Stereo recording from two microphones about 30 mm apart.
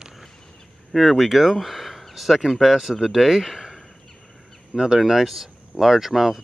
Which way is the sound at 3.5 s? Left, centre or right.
Centre.